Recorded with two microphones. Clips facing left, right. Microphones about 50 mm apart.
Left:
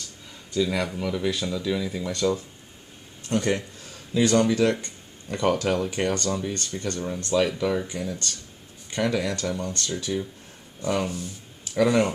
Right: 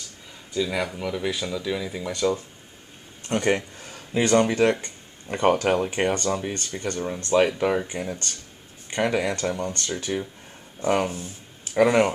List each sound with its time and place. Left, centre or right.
0.5 s speech: centre
3.3 s speech: right